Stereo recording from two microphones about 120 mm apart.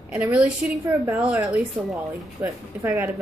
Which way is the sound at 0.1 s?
10° right (ahead or behind).